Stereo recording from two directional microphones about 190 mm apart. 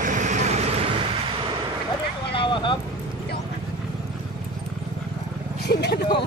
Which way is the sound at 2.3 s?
25° left (ahead or behind).